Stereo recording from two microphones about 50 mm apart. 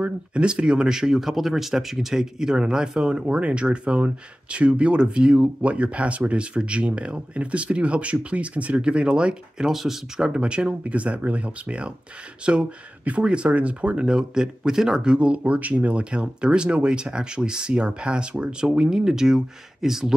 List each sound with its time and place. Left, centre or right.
0.0 s speech: right